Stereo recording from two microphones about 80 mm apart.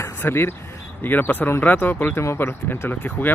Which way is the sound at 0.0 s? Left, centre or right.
Left.